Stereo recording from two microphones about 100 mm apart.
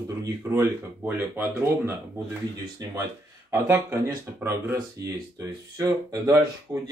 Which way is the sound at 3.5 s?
25° right (ahead or behind).